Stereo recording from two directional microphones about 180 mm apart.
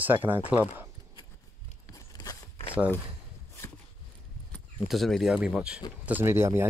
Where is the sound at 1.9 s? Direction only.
20° left (ahead or behind).